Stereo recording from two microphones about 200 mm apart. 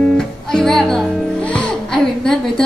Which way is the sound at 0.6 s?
5° left (ahead or behind).